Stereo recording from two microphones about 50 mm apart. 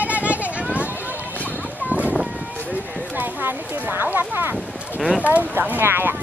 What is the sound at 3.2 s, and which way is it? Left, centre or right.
Horse, right.